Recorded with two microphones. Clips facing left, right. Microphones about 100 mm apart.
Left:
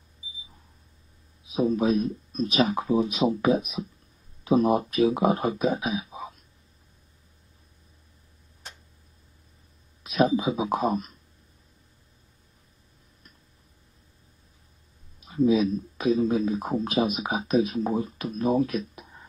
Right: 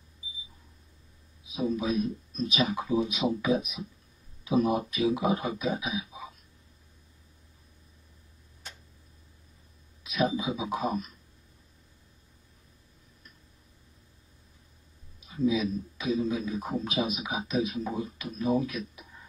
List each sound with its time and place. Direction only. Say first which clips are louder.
1.5 s speech: left 6 dB; 45° left (ahead or behind)
10.4 s speech: left 5 dB; 50° left (ahead or behind)
15.1 s speech: left 6 dB; 50° left (ahead or behind)